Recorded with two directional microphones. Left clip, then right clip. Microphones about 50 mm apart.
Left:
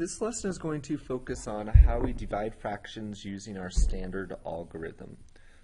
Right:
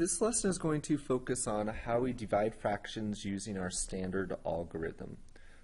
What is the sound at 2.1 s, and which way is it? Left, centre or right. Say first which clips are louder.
Speech: right 1 dB; centre.